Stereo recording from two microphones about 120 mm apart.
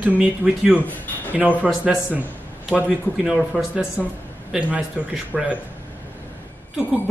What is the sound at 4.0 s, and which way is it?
Speech, 15° left (ahead or behind).